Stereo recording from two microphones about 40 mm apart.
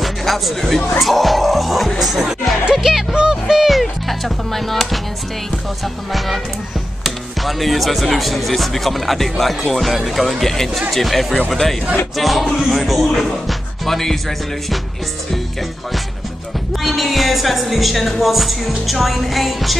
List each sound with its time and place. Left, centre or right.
0.0 s speech: centre
3.2 s music: centre
3.6 s speech: centre
6.1 s speech: centre
11.3 s speech: centre
12.2 s speech: centre
16.8 s speech: centre